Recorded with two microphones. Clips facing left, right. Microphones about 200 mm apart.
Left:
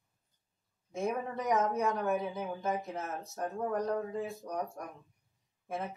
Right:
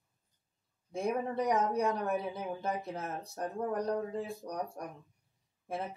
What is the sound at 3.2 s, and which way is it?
Speech, 35° right (ahead or behind).